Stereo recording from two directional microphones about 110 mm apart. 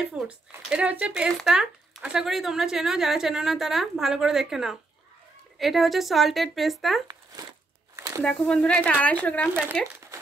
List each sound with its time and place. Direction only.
0.1 s speech: 10° right (ahead or behind)
7.9 s a sound: 30° right (ahead or behind)
8.2 s speech: 5° left (ahead or behind)